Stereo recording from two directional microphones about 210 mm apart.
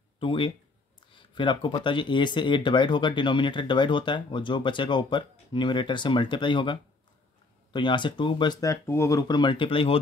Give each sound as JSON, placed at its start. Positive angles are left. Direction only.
{"t": 0.2, "sound": "speech", "side_deg": 25}